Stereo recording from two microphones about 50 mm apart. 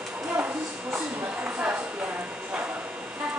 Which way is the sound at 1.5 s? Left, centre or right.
Right.